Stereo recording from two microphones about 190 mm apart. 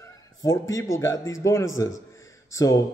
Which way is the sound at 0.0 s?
15° left (ahead or behind).